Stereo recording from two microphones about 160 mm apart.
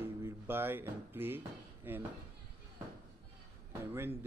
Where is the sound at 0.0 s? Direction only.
15° right (ahead or behind).